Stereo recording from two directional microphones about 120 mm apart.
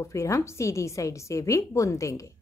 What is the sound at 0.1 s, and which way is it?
A woman's voice, 25° left (ahead or behind).